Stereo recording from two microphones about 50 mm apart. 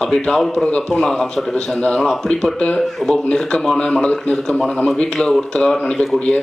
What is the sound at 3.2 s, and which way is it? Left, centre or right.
Speech, centre.